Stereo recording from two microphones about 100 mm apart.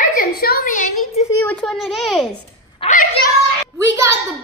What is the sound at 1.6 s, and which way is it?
Speech, centre (ahead or behind).